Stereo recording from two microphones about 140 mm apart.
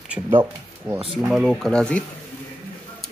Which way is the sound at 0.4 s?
15° right (ahead or behind).